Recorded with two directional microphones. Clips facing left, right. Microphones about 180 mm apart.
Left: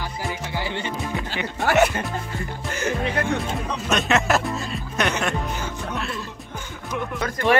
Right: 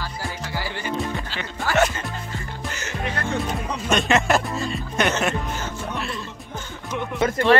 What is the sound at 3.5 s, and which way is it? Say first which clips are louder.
Speech: right 1 dB; centre (ahead or behind).